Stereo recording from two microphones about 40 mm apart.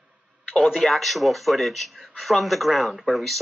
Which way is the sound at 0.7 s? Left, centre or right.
Centre.